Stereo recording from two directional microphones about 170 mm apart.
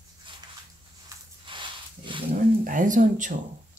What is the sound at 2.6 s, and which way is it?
Speech, 50° right (ahead or behind).